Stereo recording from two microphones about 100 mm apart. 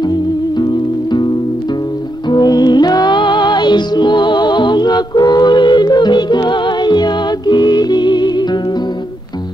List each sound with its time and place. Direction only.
0.0 s music: 45° left (ahead or behind)
2.2 s music: 45° left (ahead or behind)